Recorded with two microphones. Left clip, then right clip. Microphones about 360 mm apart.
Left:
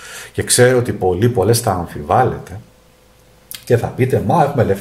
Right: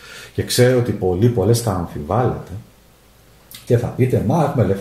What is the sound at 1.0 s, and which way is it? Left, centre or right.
Speech, left.